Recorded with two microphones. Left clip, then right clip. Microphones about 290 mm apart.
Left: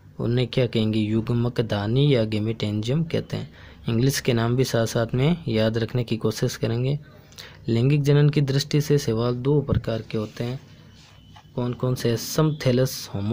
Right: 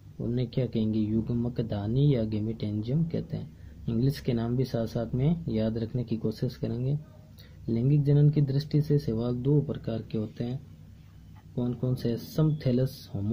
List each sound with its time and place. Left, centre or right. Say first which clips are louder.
0.3 s speech: left 8 dB; left
11.6 s speech: left 7 dB; left